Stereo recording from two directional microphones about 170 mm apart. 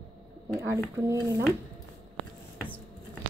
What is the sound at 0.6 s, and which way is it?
Speech, 15° right (ahead or behind).